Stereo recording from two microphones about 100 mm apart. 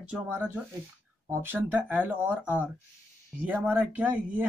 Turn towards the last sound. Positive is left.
turn(degrees=-15)  # may be behind; listen again after turning